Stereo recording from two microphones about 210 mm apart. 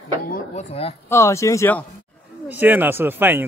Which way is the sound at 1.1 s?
15° left (ahead or behind).